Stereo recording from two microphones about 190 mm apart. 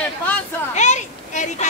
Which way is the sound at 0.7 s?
40° left (ahead or behind).